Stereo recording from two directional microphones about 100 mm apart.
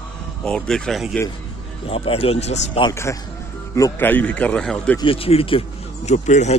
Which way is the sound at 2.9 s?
30° left (ahead or behind).